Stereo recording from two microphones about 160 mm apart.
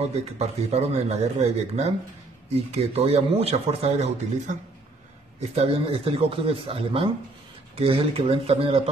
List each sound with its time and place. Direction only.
0.0 s speech: 40° right (ahead or behind)